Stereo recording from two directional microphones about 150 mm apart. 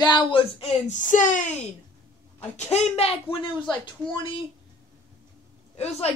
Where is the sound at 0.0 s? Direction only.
30° left (ahead or behind).